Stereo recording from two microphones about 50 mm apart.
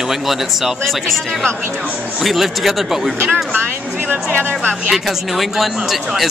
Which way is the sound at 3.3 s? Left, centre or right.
Right.